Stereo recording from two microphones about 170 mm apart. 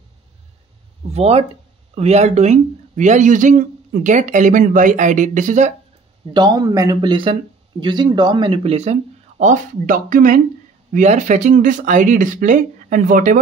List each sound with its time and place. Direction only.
1.0 s speech: 35° right (ahead or behind)
6.3 s speech: 25° right (ahead or behind)
9.4 s speech: 50° right (ahead or behind)